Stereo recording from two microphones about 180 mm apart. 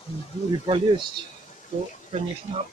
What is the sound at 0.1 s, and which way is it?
Speech, 35° left (ahead or behind).